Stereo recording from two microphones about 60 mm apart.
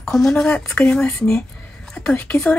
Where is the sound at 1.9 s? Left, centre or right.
Centre.